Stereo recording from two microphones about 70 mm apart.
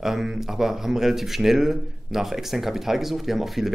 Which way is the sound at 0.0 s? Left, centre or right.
Centre.